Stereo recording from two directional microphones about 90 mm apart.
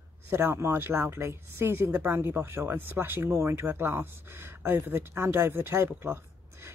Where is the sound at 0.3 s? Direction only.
25° right (ahead or behind).